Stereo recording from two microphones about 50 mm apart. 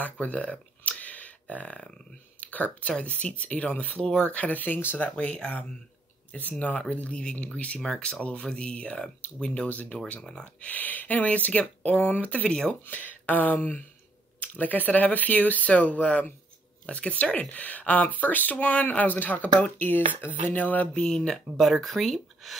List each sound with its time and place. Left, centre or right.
0.0 s a sound: left
2.4 s speech: left
4.9 s speech: left
6.9 s speech: left
7.8 s speech: centre
8.2 s speech: left
12.4 s speech: centre
12.8 s speech: left
20.9 s speech: centre
21.5 s speech: centre